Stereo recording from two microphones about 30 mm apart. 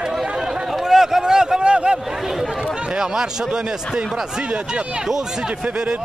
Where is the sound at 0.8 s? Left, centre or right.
Centre.